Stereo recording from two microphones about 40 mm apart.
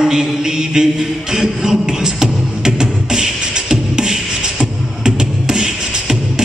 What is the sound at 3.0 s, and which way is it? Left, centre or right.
Beatboxing, centre.